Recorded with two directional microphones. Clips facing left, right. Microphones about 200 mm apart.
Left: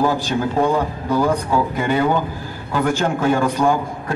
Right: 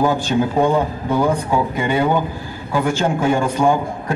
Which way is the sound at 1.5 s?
15° right (ahead or behind).